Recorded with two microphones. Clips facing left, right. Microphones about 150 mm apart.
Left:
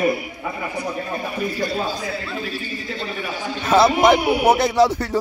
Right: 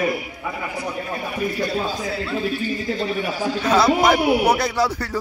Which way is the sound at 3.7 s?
25° left (ahead or behind).